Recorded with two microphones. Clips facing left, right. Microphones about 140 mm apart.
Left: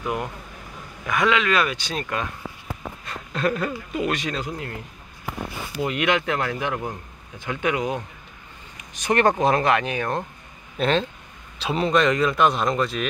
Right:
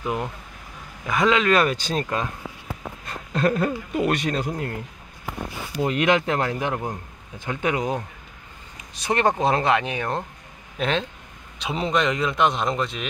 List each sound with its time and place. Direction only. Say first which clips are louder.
1.0 s speech: right 2 dB; 35° right (ahead or behind)
3.1 s speech: right 2 dB; 40° right (ahead or behind)
5.8 s a man's voice: right 2 dB; 35° right (ahead or behind)